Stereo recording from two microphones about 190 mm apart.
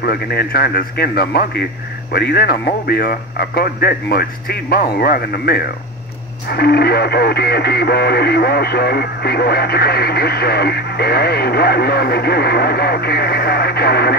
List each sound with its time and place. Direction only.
0.0 s speech: 55° left (ahead or behind)